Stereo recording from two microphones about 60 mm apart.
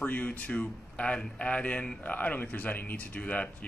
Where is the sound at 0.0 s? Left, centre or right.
Left.